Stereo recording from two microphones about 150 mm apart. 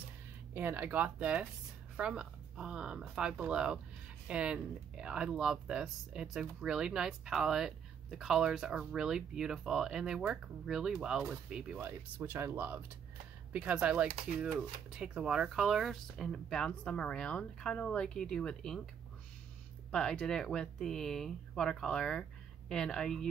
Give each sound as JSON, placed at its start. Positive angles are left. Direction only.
{"t": 0.6, "sound": "speech", "side_deg": -15}
{"t": 19.9, "sound": "speech", "side_deg": 5}